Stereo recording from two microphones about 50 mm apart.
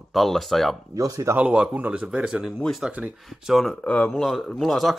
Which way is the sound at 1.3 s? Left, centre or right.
Right.